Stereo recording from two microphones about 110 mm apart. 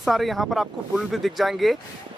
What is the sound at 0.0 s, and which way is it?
Speech, centre (ahead or behind).